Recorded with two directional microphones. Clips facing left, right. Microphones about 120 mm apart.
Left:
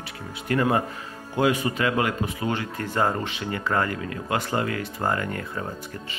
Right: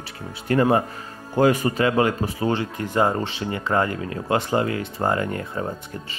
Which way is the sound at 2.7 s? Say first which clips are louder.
Right 3 dB; 20° right (ahead or behind).